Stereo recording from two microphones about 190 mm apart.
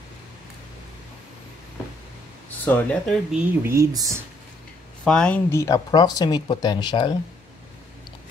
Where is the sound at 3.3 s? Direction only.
15° right (ahead or behind).